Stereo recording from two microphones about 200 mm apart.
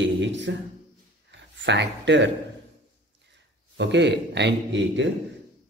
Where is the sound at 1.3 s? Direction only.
60° right (ahead or behind).